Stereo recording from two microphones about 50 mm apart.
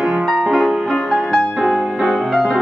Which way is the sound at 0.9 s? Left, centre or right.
Centre.